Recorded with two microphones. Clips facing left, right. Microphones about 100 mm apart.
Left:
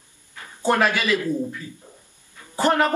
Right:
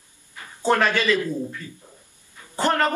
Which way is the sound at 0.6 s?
10° left (ahead or behind).